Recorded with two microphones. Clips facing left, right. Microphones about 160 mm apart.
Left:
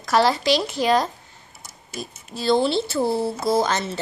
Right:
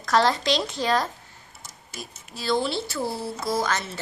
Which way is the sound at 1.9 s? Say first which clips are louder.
Left 7 dB; 25° left (ahead or behind).